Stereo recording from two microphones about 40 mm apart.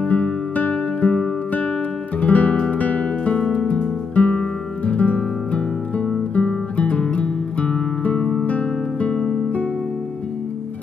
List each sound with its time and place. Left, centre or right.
0.1 s music: left
2.1 s music: left
3.3 s music: left